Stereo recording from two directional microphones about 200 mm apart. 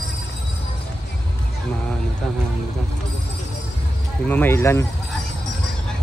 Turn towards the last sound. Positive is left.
turn(degrees=10)  # may be behind; listen again after turning